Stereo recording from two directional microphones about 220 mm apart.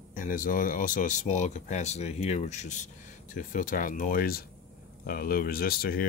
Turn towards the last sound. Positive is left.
turn(degrees=45)  # may be behind; listen again after turning